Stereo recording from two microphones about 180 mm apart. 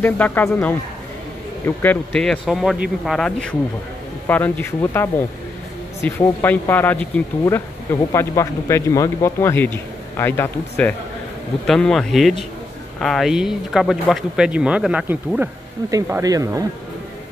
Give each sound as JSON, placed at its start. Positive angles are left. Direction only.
{"t": 0.0, "sound": "speech", "side_deg": 10}
{"t": 1.8, "sound": "speech", "side_deg": 5}